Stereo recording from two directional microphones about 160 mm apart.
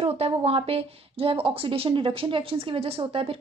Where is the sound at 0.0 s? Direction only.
40° right (ahead or behind).